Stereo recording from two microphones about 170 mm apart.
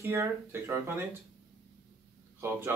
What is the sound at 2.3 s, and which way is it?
Speech, 15° right (ahead or behind).